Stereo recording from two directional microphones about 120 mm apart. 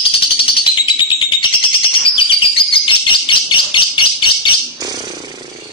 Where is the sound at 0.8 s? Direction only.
45° left (ahead or behind).